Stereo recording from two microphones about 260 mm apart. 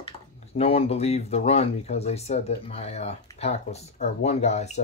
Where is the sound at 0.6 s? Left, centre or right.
Left.